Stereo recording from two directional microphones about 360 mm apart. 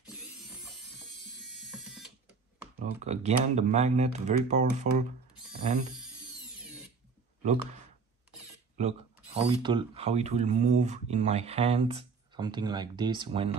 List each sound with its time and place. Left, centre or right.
1.0 s ratchet: centre
2.8 s speech: centre
8.7 s speech: centre